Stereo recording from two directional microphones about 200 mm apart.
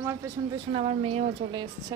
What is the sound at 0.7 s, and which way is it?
Speech, 30° right (ahead or behind).